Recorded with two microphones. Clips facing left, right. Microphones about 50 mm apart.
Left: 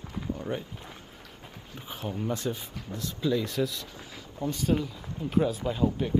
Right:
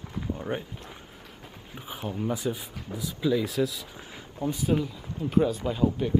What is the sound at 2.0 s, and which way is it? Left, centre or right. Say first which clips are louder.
Speech: right 2 dB; centre.